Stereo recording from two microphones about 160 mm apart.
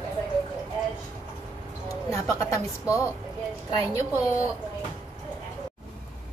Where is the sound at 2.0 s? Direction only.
20° left (ahead or behind).